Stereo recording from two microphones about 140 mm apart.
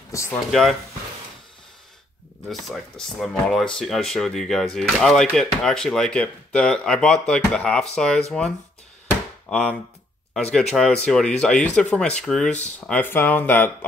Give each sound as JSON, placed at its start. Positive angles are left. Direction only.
{"t": 0.1, "sound": "speech", "side_deg": 20}
{"t": 0.5, "sound": "speech", "side_deg": 0}
{"t": 2.5, "sound": "speech", "side_deg": 0}
{"t": 9.0, "sound": "a sound", "side_deg": 10}
{"t": 10.3, "sound": "speech", "side_deg": 5}